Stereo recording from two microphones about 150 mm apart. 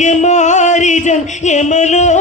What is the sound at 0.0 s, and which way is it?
Music, 50° left (ahead or behind).